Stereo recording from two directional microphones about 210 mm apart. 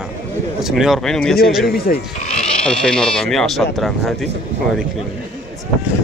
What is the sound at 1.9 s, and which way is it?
Speech, 40° left (ahead or behind).